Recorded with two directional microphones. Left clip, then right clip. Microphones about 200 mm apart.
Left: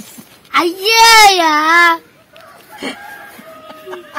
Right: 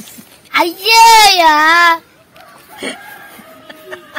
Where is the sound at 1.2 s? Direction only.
20° right (ahead or behind).